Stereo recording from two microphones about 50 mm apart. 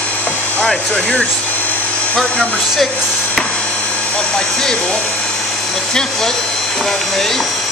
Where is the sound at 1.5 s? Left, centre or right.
Left.